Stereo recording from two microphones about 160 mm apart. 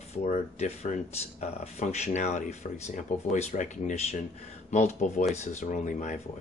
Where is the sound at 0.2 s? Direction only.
45° left (ahead or behind).